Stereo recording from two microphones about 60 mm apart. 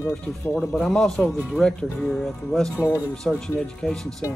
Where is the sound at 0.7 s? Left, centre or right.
Centre.